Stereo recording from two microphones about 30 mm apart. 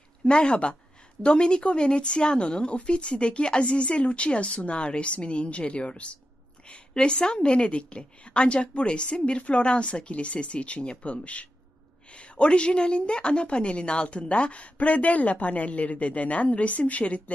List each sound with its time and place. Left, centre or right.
0.3 s a woman's voice: left